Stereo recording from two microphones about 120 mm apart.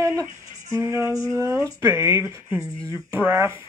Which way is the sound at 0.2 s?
25° right (ahead or behind).